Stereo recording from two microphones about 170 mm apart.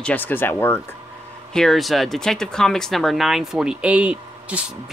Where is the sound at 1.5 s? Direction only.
Centre (ahead or behind).